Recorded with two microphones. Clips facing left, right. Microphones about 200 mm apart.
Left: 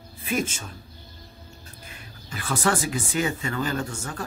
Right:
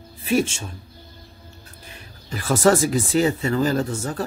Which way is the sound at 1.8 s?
35° right (ahead or behind).